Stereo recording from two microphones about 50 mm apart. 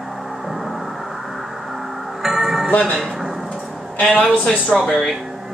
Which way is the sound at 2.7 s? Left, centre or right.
Left.